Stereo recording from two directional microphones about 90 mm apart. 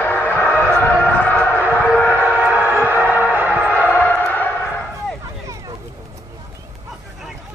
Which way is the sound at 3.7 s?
20° left (ahead or behind).